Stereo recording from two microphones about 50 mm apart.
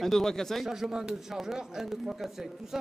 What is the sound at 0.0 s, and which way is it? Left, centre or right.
Speech, centre.